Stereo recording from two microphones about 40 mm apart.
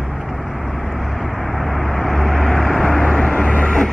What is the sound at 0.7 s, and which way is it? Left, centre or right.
Vehicle, centre.